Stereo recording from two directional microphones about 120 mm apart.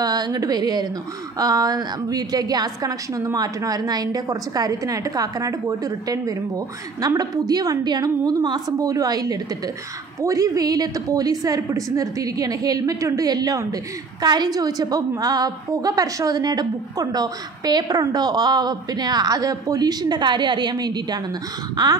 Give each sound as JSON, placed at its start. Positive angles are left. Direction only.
{"t": 0.0, "sound": "a woman's voice", "side_deg": -35}